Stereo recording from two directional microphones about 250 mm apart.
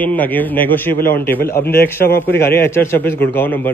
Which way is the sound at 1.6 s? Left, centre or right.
Left.